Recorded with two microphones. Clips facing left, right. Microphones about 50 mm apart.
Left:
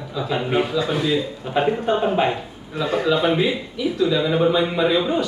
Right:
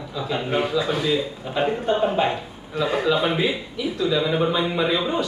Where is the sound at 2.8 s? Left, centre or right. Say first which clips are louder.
Left 2 dB; centre.